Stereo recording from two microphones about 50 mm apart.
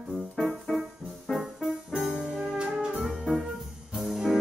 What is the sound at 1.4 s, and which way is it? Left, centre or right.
Music, centre.